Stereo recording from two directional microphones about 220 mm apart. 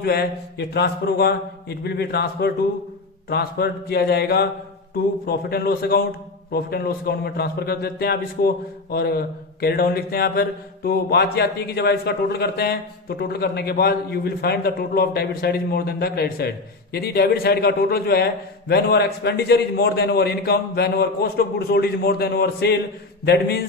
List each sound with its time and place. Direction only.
0.0 s a man's voice: 45° left (ahead or behind)